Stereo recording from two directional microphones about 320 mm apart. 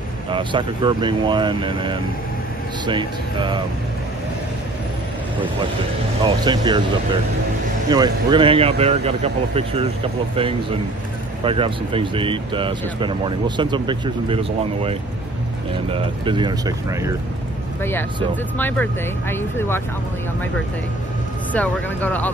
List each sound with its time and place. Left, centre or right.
0.3 s speech: centre
6.2 s speech: centre
7.9 s speech: centre
18.6 s speech: centre
21.5 s speech: centre